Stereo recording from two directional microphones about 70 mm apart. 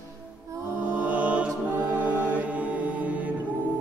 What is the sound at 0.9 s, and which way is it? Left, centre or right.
Music, centre.